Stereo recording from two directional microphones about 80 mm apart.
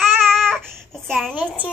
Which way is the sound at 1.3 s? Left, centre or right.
Right.